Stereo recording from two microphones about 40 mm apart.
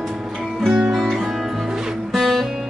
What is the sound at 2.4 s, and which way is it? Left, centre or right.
Music, centre.